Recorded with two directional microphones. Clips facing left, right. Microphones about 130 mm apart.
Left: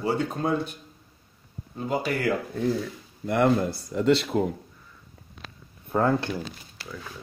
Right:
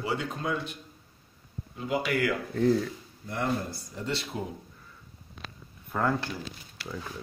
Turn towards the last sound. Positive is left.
turn(degrees=25)  # may be behind; listen again after turning